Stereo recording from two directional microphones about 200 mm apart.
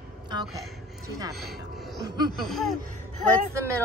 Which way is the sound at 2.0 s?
20° right (ahead or behind).